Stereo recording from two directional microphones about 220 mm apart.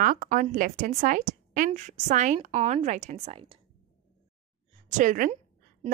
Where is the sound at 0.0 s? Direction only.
35° right (ahead or behind).